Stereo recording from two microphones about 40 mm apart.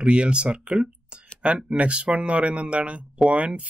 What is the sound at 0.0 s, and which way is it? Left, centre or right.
Speech, right.